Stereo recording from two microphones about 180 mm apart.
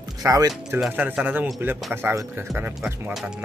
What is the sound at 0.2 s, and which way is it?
Speech, 15° right (ahead or behind).